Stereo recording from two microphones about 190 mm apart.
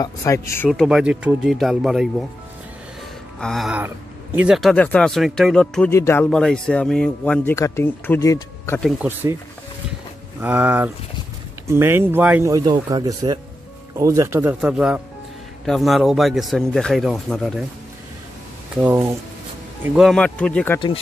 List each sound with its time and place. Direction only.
0.0 s speech: 15° left (ahead or behind)
0.7 s speech: centre (ahead or behind)
3.3 s speech: centre (ahead or behind)
9.0 s speech: 10° right (ahead or behind)
10.4 s speech: 10° right (ahead or behind)
18.8 s speech: 10° right (ahead or behind)
20.0 s speech: centre (ahead or behind)